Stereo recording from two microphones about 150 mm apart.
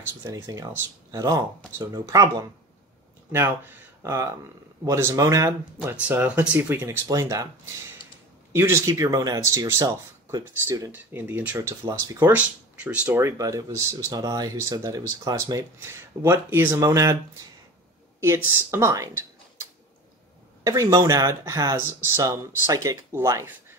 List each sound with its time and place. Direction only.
0.2 s speech: 25° right (ahead or behind)
5.8 s speech: 10° right (ahead or behind)
12.3 s speech: 10° right (ahead or behind)
18.2 s speech: 20° right (ahead or behind)